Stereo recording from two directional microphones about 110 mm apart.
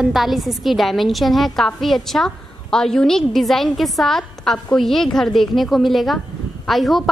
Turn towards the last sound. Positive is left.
turn(degrees=0)  # may be behind; listen again after turning